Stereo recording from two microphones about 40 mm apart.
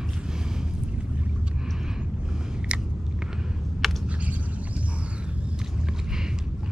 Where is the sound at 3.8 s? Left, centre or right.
Centre.